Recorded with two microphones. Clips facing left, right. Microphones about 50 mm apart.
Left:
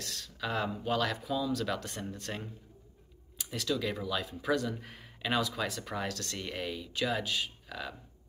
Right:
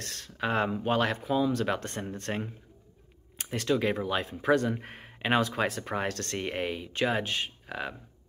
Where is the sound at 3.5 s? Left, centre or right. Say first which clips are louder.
Right 6 dB; right.